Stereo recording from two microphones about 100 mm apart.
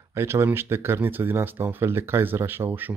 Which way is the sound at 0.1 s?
25° right (ahead or behind).